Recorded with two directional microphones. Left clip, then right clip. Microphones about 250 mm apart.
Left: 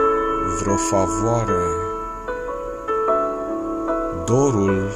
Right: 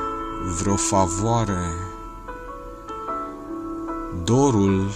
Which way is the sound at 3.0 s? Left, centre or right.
Left.